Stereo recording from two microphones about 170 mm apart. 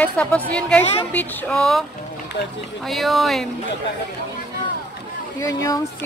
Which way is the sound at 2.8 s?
Centre (ahead or behind).